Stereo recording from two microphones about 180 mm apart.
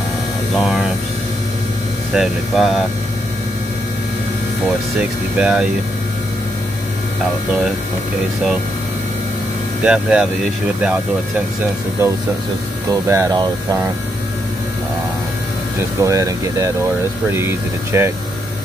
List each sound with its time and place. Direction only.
0.5 s speech: centre (ahead or behind)
2.1 s speech: centre (ahead or behind)
5.4 s speech: 5° right (ahead or behind)
9.8 s speech: 5° right (ahead or behind)
16.0 s speech: 20° right (ahead or behind)